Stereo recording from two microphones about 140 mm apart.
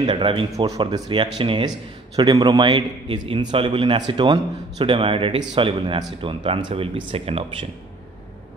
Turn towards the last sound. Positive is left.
turn(degrees=-45)  # may be behind; listen again after turning